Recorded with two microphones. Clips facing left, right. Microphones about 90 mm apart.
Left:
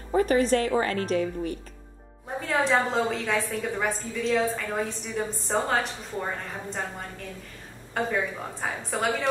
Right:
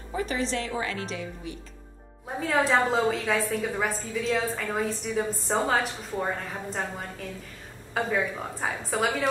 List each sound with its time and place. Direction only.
0.1 s a woman's voice: 50° left (ahead or behind)
2.4 s a woman's voice: centre (ahead or behind)